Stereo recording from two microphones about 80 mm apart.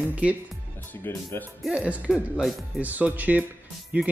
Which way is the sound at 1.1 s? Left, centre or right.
Left.